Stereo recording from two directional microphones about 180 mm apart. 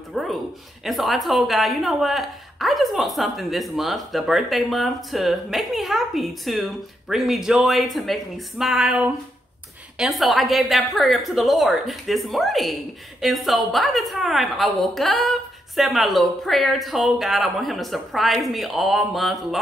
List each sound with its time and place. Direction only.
0.1 s speech: centre (ahead or behind)